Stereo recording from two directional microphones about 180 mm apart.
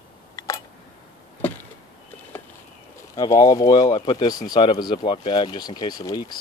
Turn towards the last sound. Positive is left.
turn(degrees=20)  # may be behind; listen again after turning